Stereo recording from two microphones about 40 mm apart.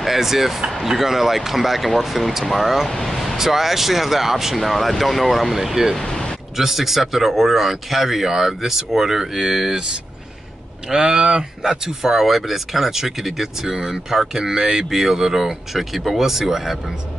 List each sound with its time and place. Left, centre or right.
0.0 s speech: centre
3.3 s speech: centre
6.0 s a sound: centre
6.5 s speech: centre
10.9 s speech: centre